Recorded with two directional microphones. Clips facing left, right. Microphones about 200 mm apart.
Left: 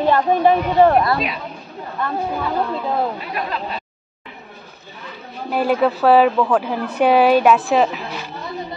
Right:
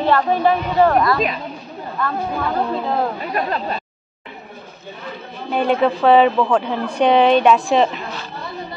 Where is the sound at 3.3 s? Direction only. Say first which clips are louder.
Right 3 dB; 45° right (ahead or behind).